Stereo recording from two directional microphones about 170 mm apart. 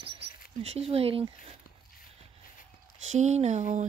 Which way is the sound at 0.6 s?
35° right (ahead or behind).